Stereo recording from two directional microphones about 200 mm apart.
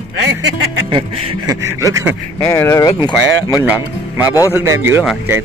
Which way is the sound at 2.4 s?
15° left (ahead or behind).